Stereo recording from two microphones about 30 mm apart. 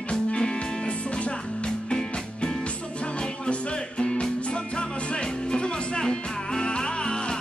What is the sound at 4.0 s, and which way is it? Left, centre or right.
Music, left.